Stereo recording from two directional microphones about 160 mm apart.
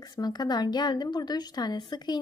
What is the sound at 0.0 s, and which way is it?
Speech, 25° left (ahead or behind).